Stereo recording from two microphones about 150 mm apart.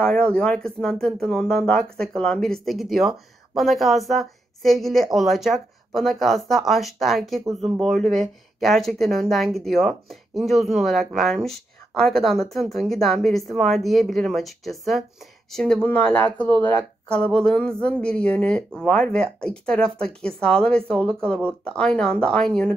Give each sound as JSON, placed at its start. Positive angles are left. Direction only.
{"t": 0.0, "sound": "speech", "side_deg": 5}